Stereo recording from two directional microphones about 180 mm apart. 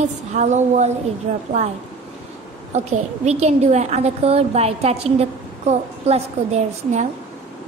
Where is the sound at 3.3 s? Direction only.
35° right (ahead or behind).